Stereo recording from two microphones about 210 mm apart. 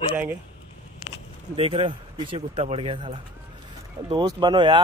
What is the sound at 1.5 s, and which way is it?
Speech, 25° right (ahead or behind).